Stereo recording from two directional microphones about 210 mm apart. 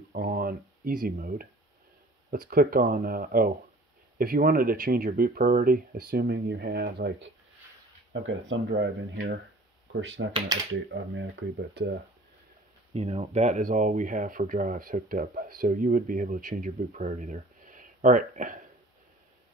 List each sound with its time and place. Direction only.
0.1 s speech: 45° right (ahead or behind)
8.1 s speech: 60° right (ahead or behind)
12.9 s speech: 30° right (ahead or behind)